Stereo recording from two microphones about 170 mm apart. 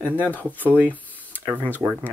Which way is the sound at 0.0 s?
10° left (ahead or behind).